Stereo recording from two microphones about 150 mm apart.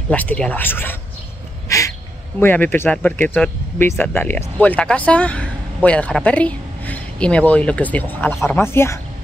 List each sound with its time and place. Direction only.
0.1 s speech: 10° left (ahead or behind)
1.7 s bird: 20° left (ahead or behind)
2.4 s speech: 10° left (ahead or behind)